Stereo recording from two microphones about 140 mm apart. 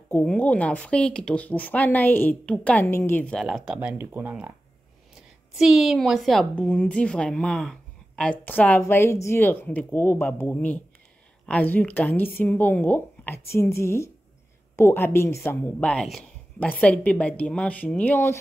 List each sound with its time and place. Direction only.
0.1 s speech: 10° left (ahead or behind)
3.4 s a woman's voice: 5° right (ahead or behind); by 18.4 s 15° left (ahead or behind)